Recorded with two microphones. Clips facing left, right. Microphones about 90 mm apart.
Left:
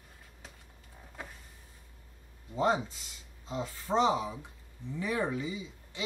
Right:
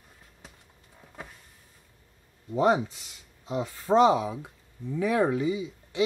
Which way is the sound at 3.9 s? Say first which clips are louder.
Right 7 dB; 90° right.